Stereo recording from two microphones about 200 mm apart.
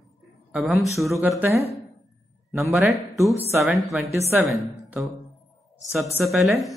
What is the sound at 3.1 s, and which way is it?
Speech, 15° right (ahead or behind).